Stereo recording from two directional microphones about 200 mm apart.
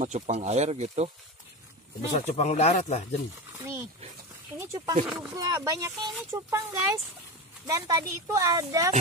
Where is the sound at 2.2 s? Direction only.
35° left (ahead or behind).